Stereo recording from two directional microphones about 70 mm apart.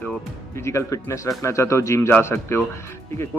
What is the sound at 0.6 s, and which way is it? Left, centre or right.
Speech, left.